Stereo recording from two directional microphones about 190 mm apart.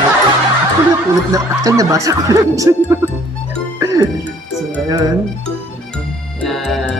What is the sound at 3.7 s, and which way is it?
Music, 15° right (ahead or behind).